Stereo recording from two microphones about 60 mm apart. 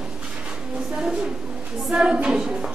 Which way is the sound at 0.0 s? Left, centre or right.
Centre.